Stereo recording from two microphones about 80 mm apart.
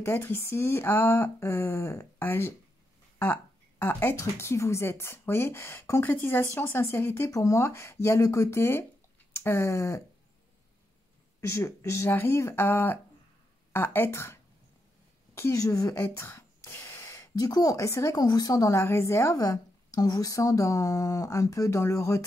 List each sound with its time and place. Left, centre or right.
0.0 s speech: left
3.8 s speech: left
7.2 s speech: left
11.4 s speech: left
15.5 s speech: left
16.0 s a sound: left
17.4 s speech: left
18.1 s speech: left
19.3 s speech: left